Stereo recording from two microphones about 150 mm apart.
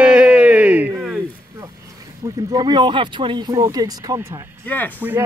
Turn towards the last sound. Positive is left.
turn(degrees=10)  # may be behind; listen again after turning